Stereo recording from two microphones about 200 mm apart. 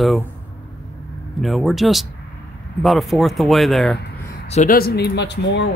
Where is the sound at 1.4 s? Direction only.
Centre (ahead or behind).